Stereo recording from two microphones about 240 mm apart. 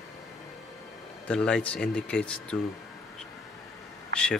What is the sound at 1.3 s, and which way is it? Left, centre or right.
Speech, centre.